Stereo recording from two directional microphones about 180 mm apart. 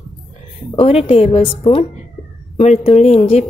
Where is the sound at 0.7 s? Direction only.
30° left (ahead or behind).